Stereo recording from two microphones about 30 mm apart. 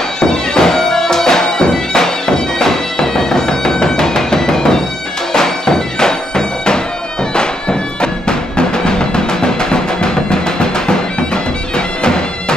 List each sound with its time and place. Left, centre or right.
0.2 s bagpipes: centre